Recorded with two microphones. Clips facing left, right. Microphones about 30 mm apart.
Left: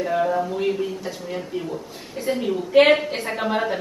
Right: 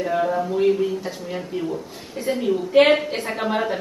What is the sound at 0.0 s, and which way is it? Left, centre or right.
Speech, centre.